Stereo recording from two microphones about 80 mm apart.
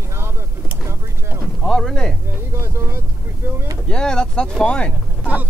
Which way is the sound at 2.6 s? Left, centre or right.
Right.